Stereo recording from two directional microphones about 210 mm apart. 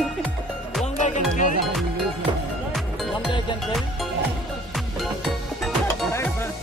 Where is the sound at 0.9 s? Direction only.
35° left (ahead or behind).